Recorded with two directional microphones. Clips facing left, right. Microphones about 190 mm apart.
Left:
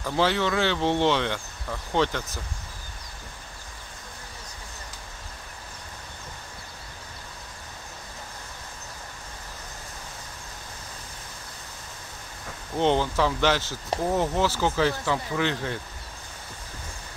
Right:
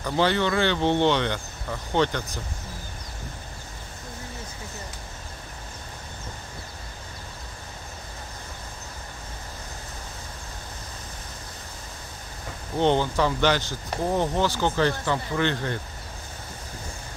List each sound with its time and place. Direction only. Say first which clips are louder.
0.0 s speech: right 1 dB; centre (ahead or behind)
12.7 s speech: right 1 dB; centre (ahead or behind)